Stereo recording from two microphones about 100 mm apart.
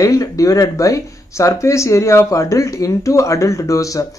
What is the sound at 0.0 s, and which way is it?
Speech, 35° left (ahead or behind).